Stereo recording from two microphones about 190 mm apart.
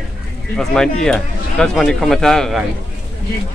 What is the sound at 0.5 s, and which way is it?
Speech, 5° left (ahead or behind).